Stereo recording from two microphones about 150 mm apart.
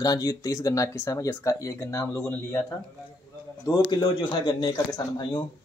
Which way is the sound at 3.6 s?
25° left (ahead or behind).